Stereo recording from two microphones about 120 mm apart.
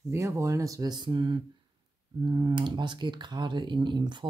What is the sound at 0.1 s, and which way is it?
Speech, 25° right (ahead or behind).